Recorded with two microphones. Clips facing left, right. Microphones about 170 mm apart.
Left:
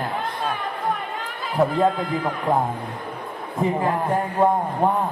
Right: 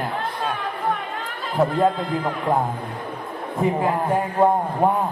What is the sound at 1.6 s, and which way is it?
A man's voice, centre (ahead or behind).